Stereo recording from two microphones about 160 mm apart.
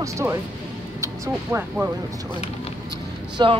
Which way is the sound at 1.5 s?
15° right (ahead or behind).